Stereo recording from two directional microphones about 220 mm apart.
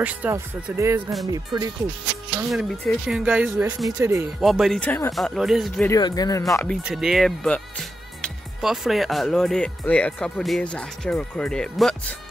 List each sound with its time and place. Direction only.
0.0 s speech: 5° right (ahead or behind)
2.5 s speech: centre (ahead or behind)
4.4 s speech: centre (ahead or behind)
5.9 s speech: 20° left (ahead or behind)
6.8 s speech: centre (ahead or behind)